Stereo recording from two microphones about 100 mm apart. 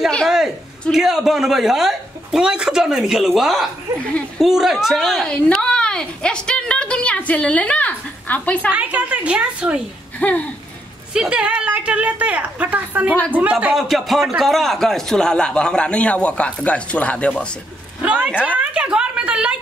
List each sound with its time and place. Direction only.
0.9 s speech: 5° right (ahead or behind)
5.3 s a woman's voice: 10° left (ahead or behind)
8.7 s a woman's voice: 15° right (ahead or behind)
10.1 s speech: 15° left (ahead or behind)
11.1 s a woman's voice: 10° right (ahead or behind)
13.7 s a woman's voice: centre (ahead or behind)
18.0 s a woman's voice: 15° right (ahead or behind)
18.3 s a woman's voice: 15° left (ahead or behind)
18.6 s a sound: 10° right (ahead or behind)